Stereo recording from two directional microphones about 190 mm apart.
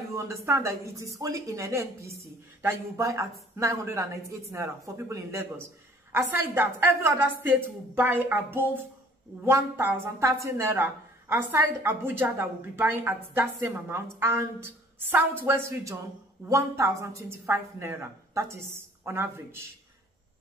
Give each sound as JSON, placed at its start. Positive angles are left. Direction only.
{"t": 0.1, "sound": "a woman's voice", "side_deg": -15}